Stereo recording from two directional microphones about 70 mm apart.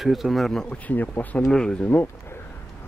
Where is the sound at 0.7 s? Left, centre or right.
Left.